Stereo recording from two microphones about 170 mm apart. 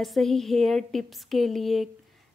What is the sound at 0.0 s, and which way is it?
Speech, centre (ahead or behind).